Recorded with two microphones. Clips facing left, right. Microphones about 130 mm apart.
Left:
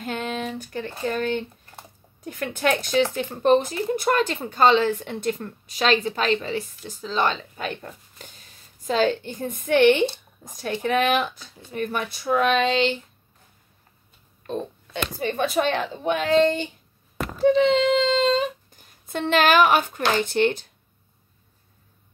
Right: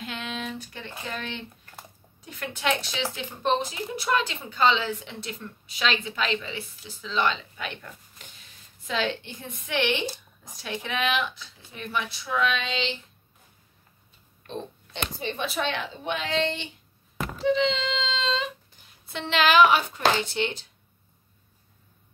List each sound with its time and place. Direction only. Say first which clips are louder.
0.0 s speech: left 6 dB; 45° left (ahead or behind)
14.4 s speech: left 6 dB; 45° left (ahead or behind)